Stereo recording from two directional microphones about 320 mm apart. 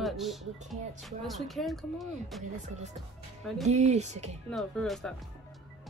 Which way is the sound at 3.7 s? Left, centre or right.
Right.